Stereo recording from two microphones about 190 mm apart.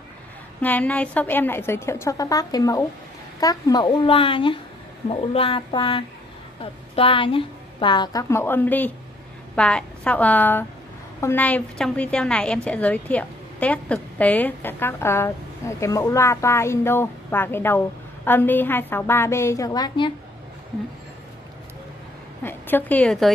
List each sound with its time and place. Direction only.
0.6 s a woman's voice: 10° left (ahead or behind)
22.4 s a woman's voice: 10° left (ahead or behind)